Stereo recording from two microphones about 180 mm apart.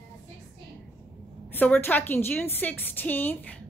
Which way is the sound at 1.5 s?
10° left (ahead or behind).